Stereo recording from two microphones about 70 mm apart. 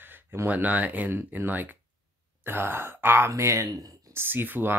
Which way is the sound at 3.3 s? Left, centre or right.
Right.